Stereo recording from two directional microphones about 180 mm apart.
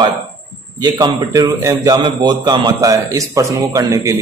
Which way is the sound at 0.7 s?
20° right (ahead or behind).